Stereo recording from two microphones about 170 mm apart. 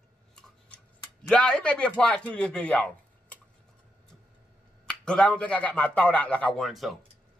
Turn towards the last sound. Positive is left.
turn(degrees=0)  # may be behind; listen again after turning